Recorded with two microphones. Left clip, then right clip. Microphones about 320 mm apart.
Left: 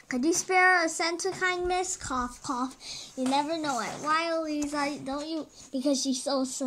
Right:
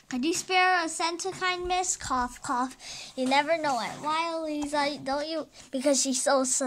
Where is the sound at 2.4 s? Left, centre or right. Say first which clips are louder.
Right 3 dB; right.